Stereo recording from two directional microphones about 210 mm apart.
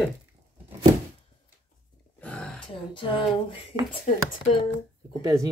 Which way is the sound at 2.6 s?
25° left (ahead or behind).